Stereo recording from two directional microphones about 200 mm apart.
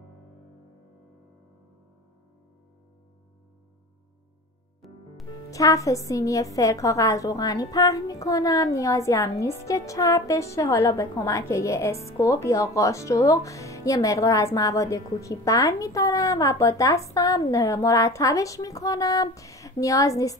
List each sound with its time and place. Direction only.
4.8 s music: centre (ahead or behind)
5.5 s a woman's voice: 15° left (ahead or behind)